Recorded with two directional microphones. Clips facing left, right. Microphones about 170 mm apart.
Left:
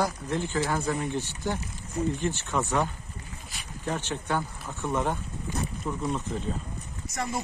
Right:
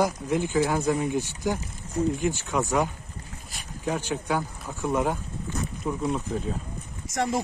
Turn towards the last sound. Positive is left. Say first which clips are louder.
# right 5 dB
turn(degrees=-90)